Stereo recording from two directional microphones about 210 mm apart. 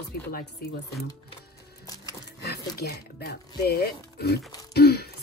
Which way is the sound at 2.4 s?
50° left (ahead or behind).